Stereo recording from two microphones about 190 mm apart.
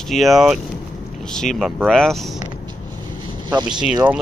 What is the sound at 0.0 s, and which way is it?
Speech, centre (ahead or behind).